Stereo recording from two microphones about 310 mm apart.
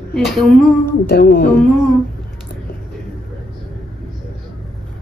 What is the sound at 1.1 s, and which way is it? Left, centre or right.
Speech, left.